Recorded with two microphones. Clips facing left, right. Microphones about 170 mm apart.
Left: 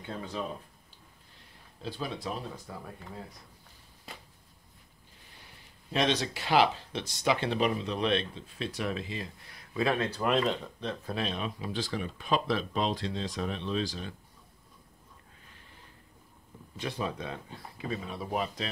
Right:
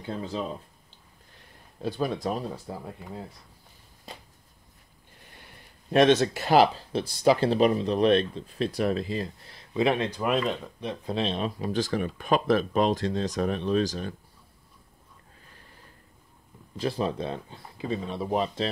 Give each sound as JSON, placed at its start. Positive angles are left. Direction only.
{"t": 0.0, "sound": "speech", "side_deg": -30}
{"t": 1.8, "sound": "speech", "side_deg": -50}
{"t": 2.5, "sound": "speech", "side_deg": -30}
{"t": 5.9, "sound": "speech", "side_deg": -55}
{"t": 9.6, "sound": "speech", "side_deg": -20}
{"t": 10.2, "sound": "speech", "side_deg": -5}
{"t": 10.8, "sound": "speech", "side_deg": -15}
{"t": 11.1, "sound": "speech", "side_deg": -30}
{"t": 16.7, "sound": "speech", "side_deg": -30}